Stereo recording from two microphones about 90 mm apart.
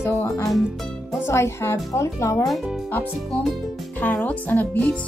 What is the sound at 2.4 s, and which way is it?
Speech, centre (ahead or behind).